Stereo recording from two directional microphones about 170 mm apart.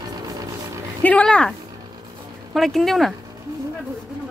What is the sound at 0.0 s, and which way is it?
Music, 20° right (ahead or behind).